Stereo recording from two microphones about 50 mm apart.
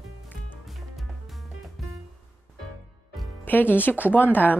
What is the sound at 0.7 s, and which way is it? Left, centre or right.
Music, centre.